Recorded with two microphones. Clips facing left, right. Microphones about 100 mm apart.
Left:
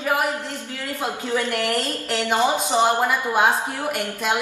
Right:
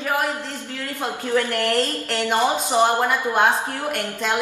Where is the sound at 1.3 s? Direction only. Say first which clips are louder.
Right 3 dB; 15° left (ahead or behind).